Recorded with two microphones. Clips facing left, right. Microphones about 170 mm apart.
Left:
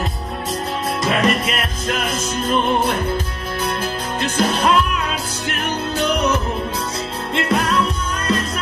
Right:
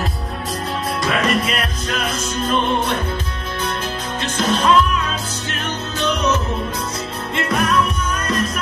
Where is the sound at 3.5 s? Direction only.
30° left (ahead or behind).